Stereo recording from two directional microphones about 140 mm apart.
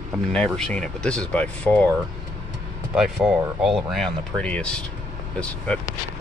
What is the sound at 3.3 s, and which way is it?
Speech, 5° right (ahead or behind).